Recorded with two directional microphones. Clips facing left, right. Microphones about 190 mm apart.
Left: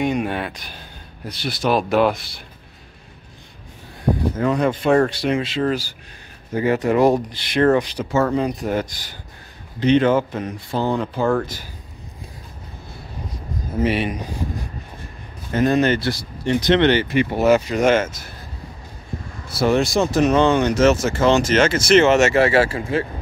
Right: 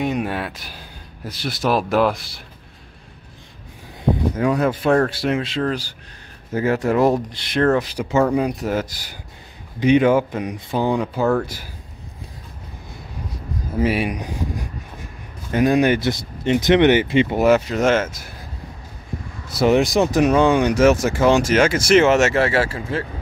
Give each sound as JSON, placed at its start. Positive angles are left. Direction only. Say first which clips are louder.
{"t": 0.0, "sound": "speech", "louder": "left 1 dB", "side_deg": 0}
{"t": 4.4, "sound": "speech", "louder": "even", "side_deg": -10}
{"t": 8.0, "sound": "speech", "louder": "right 1 dB", "side_deg": -10}
{"t": 15.6, "sound": "speech", "louder": "right 1 dB", "side_deg": -15}
{"t": 17.5, "sound": "speech", "louder": "left 4 dB", "side_deg": 0}
{"t": 19.5, "sound": "speech", "louder": "right 2 dB", "side_deg": -15}
{"t": 22.4, "sound": "speech", "louder": "left 3 dB", "side_deg": 15}